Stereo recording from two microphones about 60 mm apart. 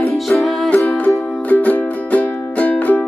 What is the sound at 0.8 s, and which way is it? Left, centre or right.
Music, left.